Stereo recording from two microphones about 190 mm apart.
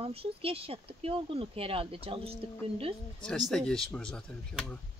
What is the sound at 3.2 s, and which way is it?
Speech, centre (ahead or behind).